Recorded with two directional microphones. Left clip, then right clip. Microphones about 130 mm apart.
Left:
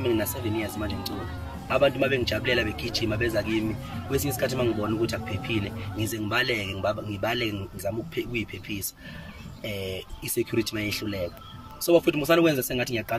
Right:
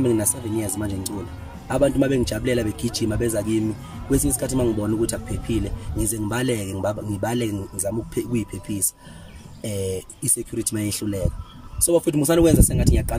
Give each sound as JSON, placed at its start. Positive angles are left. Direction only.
{"t": 0.0, "sound": "a man's voice", "side_deg": -40}